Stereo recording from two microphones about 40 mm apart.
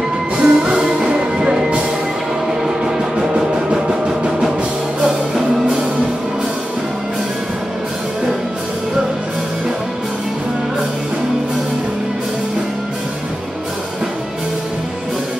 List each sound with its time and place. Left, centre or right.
0.4 s music: right
2.6 s music: centre